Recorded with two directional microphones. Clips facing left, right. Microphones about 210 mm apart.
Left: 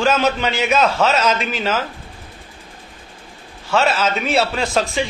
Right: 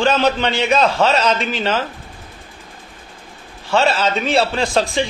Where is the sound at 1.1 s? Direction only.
30° right (ahead or behind).